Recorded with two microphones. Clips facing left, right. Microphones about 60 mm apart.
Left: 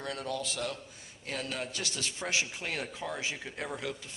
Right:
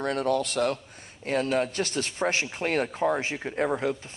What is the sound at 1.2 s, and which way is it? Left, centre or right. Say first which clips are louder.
Speech: right 11 dB; right.